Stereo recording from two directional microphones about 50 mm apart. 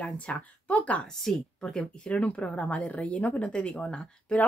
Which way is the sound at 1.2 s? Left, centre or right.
Centre.